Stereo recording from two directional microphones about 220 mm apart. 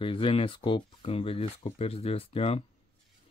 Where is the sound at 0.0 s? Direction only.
25° left (ahead or behind).